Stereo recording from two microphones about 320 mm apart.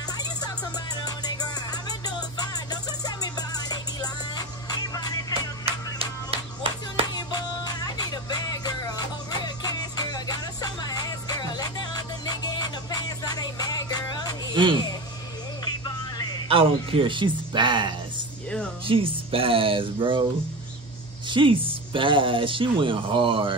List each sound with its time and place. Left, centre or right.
1.0 s music: centre
5.7 s music: centre
7.2 s music: centre
14.5 s a sound: centre
15.8 s music: centre
16.4 s speech: centre
21.3 s speech: centre